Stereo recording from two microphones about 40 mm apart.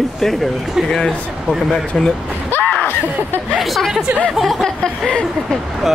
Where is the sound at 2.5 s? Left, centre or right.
Left.